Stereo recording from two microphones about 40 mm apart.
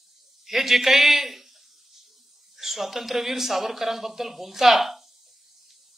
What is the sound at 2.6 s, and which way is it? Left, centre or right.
Speech, centre.